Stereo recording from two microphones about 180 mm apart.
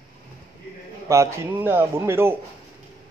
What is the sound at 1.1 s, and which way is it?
A man's voice, 15° right (ahead or behind).